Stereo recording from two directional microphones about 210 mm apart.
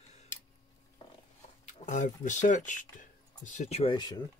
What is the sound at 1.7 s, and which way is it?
Speech, 35° left (ahead or behind).